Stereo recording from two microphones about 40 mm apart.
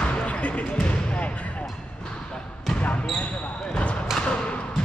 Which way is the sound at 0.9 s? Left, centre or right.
Left.